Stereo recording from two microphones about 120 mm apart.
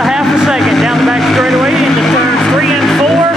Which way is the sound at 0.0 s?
Centre (ahead or behind).